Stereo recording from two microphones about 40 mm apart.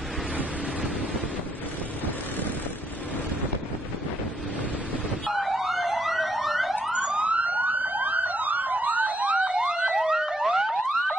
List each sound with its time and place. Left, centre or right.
5.3 s emergency vehicle: centre
6.7 s emergency vehicle: right
9.5 s siren: right
9.9 s car alarm: centre